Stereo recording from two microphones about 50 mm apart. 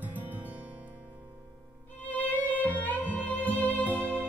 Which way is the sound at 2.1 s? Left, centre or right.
Left.